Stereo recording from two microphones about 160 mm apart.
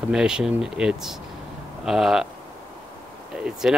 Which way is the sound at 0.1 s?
5° right (ahead or behind).